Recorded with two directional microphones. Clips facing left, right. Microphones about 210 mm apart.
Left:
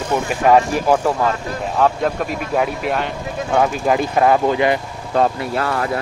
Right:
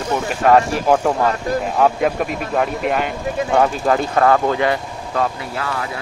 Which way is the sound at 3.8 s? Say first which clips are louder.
Even; 15° left (ahead or behind).